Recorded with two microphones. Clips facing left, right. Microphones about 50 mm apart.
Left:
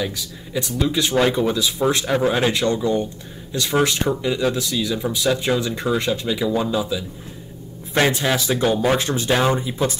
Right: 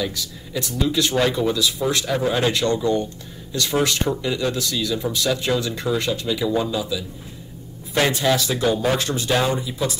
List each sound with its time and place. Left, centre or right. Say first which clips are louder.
0.0 s speech: even; centre
6.4 s speech: even; centre
6.7 s speech: left 3 dB; left
8.1 s speech: even; centre